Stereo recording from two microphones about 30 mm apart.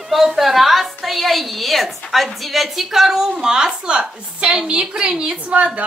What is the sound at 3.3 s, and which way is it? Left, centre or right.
A woman's voice, right.